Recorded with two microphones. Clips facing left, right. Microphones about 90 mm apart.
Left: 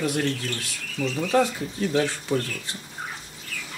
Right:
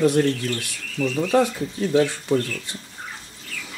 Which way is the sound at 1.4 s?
20° right (ahead or behind).